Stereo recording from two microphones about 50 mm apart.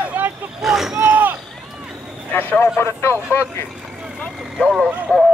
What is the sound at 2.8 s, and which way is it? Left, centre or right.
Speech, left.